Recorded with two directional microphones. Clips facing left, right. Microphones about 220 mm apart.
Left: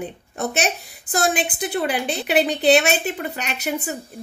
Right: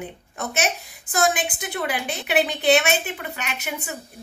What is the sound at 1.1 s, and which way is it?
A woman's voice, 35° left (ahead or behind).